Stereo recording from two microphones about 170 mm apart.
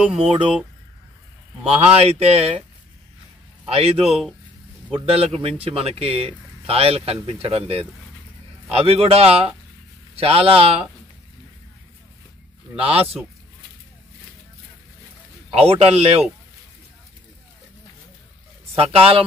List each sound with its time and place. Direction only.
0.0 s speech: 5° right (ahead or behind)
2.0 s speech: 35° right (ahead or behind)
3.6 s speech: 35° right (ahead or behind)
12.7 s speech: 35° right (ahead or behind)
15.5 s speech: 35° right (ahead or behind)
18.8 s speech: 35° right (ahead or behind)